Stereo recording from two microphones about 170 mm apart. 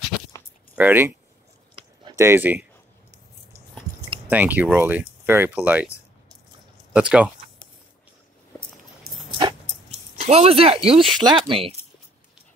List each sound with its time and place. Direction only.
0.1 s a sound: centre (ahead or behind)
0.7 s speech: 10° right (ahead or behind)
4.3 s speech: 10° right (ahead or behind)
6.9 s speech: 5° right (ahead or behind)
9.3 s dog: 30° right (ahead or behind)
10.2 s speech: 40° right (ahead or behind)